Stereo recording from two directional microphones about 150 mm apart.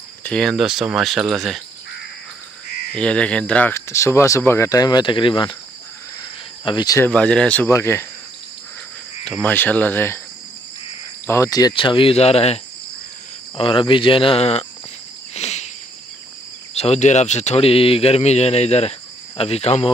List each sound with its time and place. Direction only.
0.2 s speech: 5° left (ahead or behind)
2.9 s speech: 5° left (ahead or behind); by 5.6 s 30° left (ahead or behind)
6.6 s speech: 30° left (ahead or behind)
7.1 s speech: 5° left (ahead or behind)
7.7 s speech: 20° left (ahead or behind)
9.4 s speech: 10° left (ahead or behind)
11.2 s speech: 20° left (ahead or behind); by 12.5 s 45° left (ahead or behind)
13.6 s speech: 35° left (ahead or behind)
15.3 s cricket: 45° left (ahead or behind)
16.7 s speech: 45° left (ahead or behind)